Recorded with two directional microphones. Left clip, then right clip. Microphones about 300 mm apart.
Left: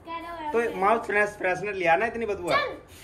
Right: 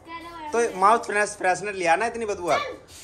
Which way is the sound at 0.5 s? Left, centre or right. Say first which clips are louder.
Right 4 dB; centre.